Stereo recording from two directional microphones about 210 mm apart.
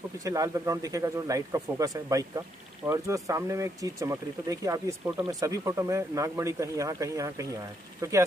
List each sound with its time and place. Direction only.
0.2 s speech: 15° right (ahead or behind)